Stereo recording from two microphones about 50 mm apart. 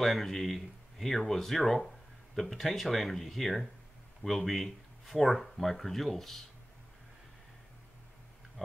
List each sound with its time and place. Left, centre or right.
0.0 s speech: centre
8.6 s tick-tock: centre